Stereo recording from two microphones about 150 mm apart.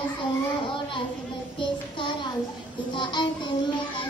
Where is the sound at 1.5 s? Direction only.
30° left (ahead or behind).